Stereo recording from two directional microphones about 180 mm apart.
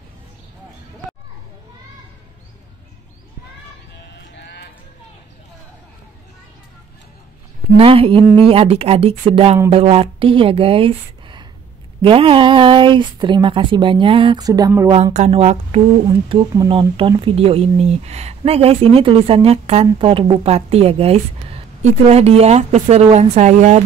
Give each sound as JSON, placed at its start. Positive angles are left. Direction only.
{"t": 4.4, "sound": "clip-clop", "side_deg": 65}
{"t": 7.7, "sound": "speech", "side_deg": -30}
{"t": 15.1, "sound": "speech", "side_deg": -35}